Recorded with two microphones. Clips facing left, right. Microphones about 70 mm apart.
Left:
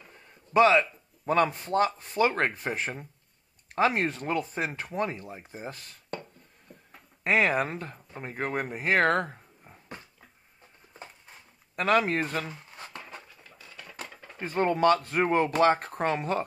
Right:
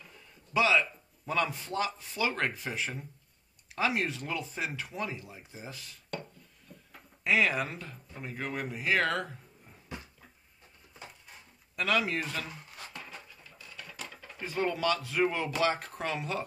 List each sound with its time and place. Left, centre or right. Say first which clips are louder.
0.0 s a sound: left 2 dB; left
1.2 s speech: left 7 dB; left
7.2 s speech: left 3 dB; left
11.7 s speech: left 5 dB; left
12.7 s a sound: left 2 dB; left
14.4 s speech: left 7 dB; left